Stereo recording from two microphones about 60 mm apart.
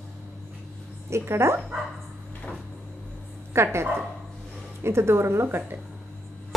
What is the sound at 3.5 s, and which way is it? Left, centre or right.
Speech, right.